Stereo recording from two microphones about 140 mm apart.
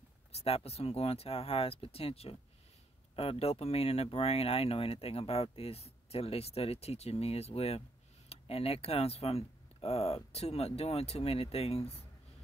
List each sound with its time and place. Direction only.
0.3 s speech: 45° left (ahead or behind)